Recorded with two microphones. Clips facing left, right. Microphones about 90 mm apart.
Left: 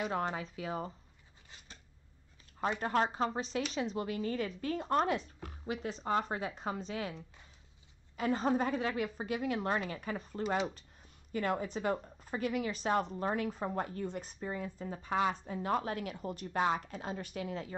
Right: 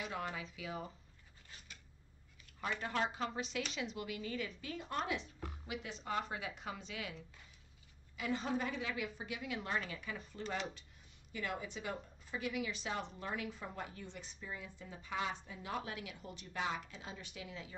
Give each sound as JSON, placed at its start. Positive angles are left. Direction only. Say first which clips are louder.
{"t": 0.0, "sound": "a woman's voice", "louder": "left 7 dB", "side_deg": 40}
{"t": 2.8, "sound": "a woman's voice", "louder": "left 7 dB", "side_deg": 40}